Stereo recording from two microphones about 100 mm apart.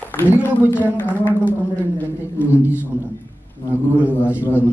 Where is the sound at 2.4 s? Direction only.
15° right (ahead or behind).